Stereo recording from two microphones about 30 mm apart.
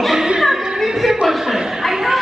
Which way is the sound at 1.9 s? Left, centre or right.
Centre.